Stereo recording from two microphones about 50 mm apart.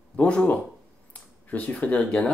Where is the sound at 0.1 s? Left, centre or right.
Left.